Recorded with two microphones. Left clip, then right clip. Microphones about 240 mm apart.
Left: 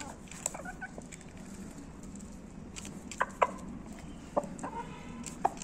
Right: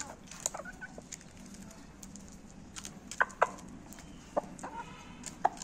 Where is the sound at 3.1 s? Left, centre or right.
Centre.